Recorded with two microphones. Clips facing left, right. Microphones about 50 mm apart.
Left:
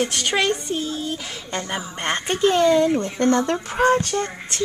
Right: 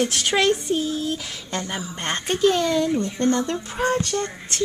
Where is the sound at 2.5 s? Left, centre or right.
Left.